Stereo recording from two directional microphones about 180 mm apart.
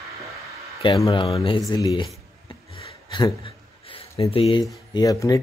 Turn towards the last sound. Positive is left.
turn(degrees=20)  # may be behind; listen again after turning